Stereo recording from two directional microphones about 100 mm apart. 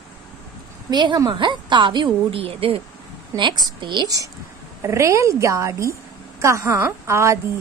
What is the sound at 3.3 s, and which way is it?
Speech, 50° right (ahead or behind).